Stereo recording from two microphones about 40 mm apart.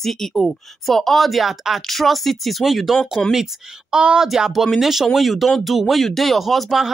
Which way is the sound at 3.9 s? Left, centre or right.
Right.